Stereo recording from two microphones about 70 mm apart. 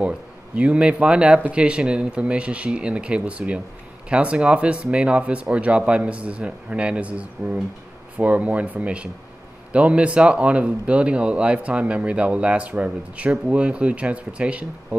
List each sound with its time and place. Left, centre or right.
0.6 s speech: centre